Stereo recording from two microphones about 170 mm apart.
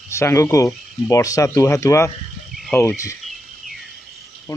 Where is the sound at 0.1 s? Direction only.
15° left (ahead or behind).